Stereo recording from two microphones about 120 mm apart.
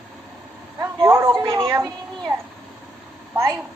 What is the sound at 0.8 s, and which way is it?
A woman's voice, 20° right (ahead or behind).